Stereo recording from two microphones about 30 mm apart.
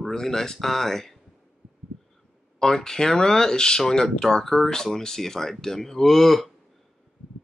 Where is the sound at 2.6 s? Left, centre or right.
Centre.